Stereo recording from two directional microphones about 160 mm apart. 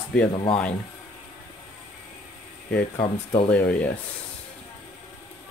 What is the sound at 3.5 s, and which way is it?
Speech, 10° left (ahead or behind).